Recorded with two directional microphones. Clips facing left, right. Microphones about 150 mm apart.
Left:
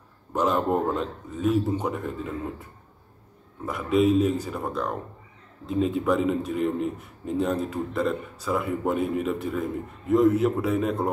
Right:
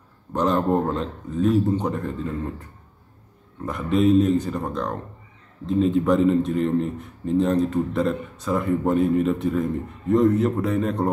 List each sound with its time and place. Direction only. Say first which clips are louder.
0.3 s a man's voice: right 3 dB; 5° left (ahead or behind)
3.6 s a man's voice: right 2 dB; 5° left (ahead or behind)